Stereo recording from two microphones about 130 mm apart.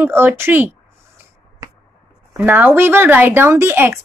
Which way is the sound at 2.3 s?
15° right (ahead or behind).